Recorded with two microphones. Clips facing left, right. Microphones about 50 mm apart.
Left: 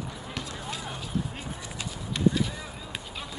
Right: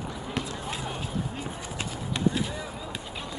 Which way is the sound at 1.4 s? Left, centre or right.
Right.